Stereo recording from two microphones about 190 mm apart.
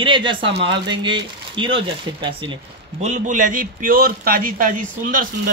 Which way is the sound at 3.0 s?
40° right (ahead or behind).